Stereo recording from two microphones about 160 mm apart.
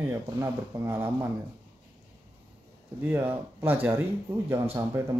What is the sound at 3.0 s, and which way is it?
A man's voice, 15° right (ahead or behind).